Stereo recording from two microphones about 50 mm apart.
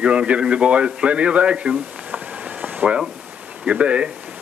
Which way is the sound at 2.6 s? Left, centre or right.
Right.